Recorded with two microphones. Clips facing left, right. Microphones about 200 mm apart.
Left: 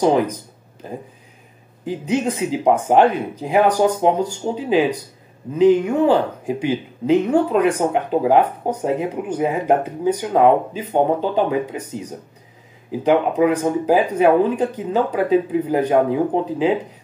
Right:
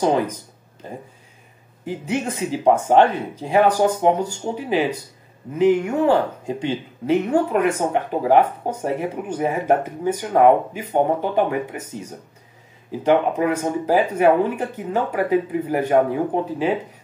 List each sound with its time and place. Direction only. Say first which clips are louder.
0.0 s speech: left 3 dB; 15° left (ahead or behind)
1.9 s speech: left 4 dB; 15° left (ahead or behind)
11.1 s speech: left 2 dB; 15° right (ahead or behind)
12.9 s speech: left 1 dB; 15° left (ahead or behind)